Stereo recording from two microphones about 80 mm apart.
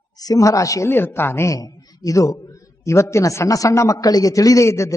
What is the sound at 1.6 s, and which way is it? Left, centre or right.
A man's voice, left.